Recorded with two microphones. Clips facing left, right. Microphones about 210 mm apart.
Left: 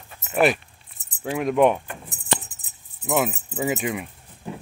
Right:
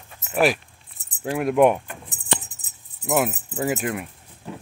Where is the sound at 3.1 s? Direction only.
Centre (ahead or behind).